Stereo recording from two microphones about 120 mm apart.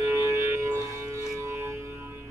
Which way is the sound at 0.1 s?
25° right (ahead or behind).